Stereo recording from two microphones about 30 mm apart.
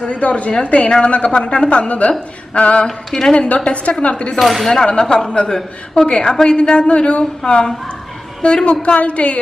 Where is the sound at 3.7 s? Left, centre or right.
Left.